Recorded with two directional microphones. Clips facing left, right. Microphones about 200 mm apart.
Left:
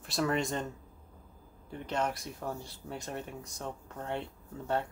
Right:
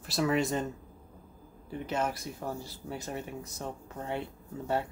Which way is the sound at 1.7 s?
5° right (ahead or behind).